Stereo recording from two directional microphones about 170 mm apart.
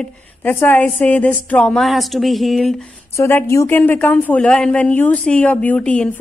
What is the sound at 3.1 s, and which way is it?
A woman's voice, 15° left (ahead or behind).